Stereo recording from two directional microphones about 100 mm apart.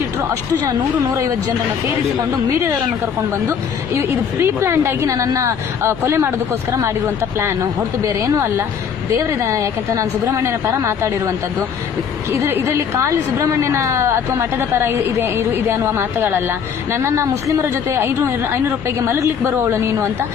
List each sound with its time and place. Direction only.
3.4 s a woman's voice: 25° right (ahead or behind)